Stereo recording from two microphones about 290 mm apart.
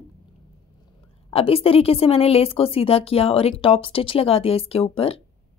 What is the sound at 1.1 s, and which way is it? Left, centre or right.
Speech, centre.